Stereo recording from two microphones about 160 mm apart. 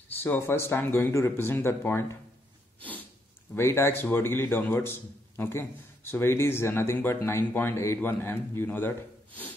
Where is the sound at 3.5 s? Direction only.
15° left (ahead or behind).